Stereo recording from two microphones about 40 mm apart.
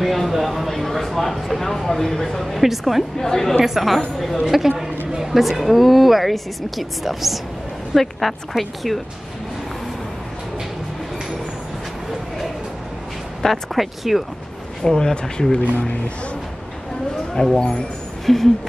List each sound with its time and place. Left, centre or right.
0.0 s speech: centre
3.2 s speech: centre
3.6 s speech: centre
13.4 s speech: centre
14.8 s speech: centre
17.3 s speech: centre
17.6 s speech: left
18.2 s a sound: centre